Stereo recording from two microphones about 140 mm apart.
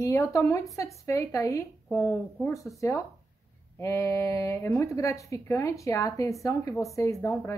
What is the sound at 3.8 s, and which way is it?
Speech, 20° left (ahead or behind).